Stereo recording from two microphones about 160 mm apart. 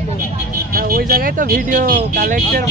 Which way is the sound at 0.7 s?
65° right (ahead or behind).